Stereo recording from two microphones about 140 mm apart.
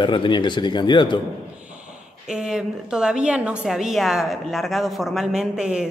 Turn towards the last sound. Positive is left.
turn(degrees=-5)  # may be behind; listen again after turning